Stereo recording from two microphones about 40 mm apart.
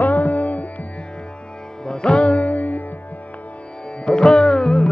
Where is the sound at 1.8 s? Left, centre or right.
Left.